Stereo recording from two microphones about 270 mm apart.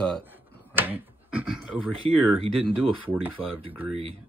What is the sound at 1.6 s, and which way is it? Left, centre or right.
Speech, centre.